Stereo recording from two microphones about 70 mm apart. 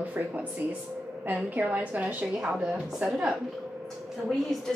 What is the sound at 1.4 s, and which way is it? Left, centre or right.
A woman's voice, right.